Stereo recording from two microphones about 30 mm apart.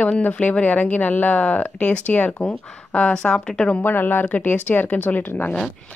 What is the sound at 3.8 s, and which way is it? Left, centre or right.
Speech, left.